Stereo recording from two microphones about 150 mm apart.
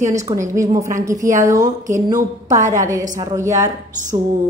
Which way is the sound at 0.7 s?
20° right (ahead or behind).